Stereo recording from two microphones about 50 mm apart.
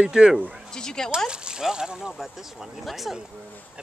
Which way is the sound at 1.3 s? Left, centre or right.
Centre.